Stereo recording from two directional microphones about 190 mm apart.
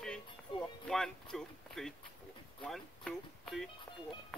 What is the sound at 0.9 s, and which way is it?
Speech, centre (ahead or behind).